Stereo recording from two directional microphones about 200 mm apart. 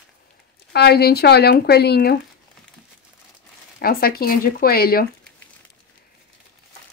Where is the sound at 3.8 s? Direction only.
50° left (ahead or behind).